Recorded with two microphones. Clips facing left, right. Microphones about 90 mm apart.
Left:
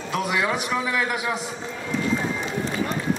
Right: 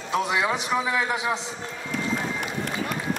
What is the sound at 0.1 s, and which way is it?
A man's voice, 25° right (ahead or behind).